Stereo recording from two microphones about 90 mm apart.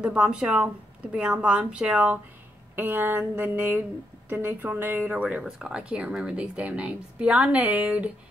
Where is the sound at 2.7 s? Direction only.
20° right (ahead or behind).